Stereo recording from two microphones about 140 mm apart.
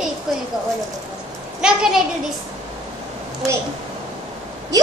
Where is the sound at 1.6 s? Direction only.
5° right (ahead or behind).